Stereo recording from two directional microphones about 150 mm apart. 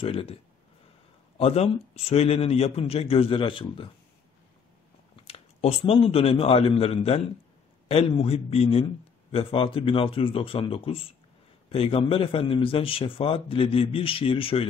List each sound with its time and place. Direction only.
0.0 s speech: 40° left (ahead or behind)
1.4 s speech: 40° left (ahead or behind)
5.1 s a man's voice: 40° left (ahead or behind)